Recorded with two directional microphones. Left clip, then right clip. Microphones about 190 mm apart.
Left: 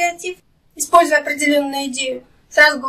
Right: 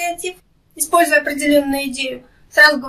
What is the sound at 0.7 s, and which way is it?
A woman's voice, 10° right (ahead or behind).